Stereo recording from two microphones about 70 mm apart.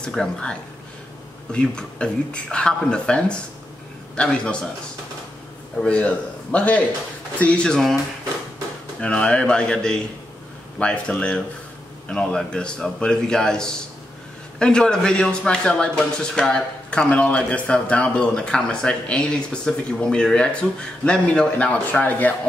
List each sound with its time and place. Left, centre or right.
0.0 s a man's voice: centre
5.8 s a man's voice: centre
9.0 s a man's voice: centre